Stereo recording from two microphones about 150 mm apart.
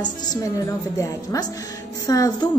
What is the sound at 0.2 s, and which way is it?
A woman's voice, 25° left (ahead or behind).